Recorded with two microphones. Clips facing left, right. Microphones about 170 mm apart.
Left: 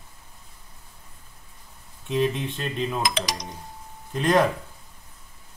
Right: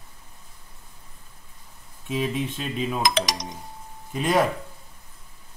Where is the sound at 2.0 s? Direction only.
5° right (ahead or behind).